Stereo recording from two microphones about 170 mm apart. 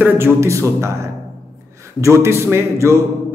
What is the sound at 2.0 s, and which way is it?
A man's voice, 15° right (ahead or behind).